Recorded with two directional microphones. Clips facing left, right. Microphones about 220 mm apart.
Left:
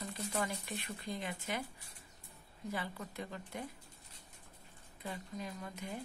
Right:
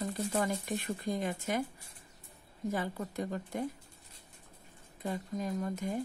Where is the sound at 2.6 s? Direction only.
45° right (ahead or behind).